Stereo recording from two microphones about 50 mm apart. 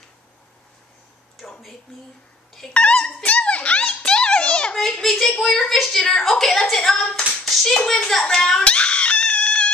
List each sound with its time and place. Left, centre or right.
2.7 s dog: left
5.0 s a child's voice: centre
8.6 s a sound: left